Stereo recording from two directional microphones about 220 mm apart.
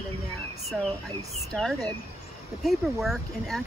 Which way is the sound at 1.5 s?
Centre (ahead or behind).